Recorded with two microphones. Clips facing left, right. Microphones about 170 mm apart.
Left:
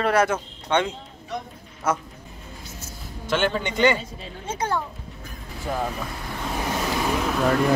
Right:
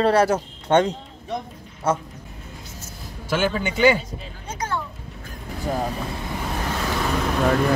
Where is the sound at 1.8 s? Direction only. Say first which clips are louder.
Right 2 dB; 30° right (ahead or behind).